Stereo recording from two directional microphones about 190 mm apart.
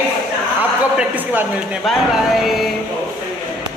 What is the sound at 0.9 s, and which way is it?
Speech, 10° right (ahead or behind).